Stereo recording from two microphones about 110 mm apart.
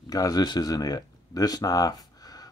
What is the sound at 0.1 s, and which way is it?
Speech, 35° left (ahead or behind).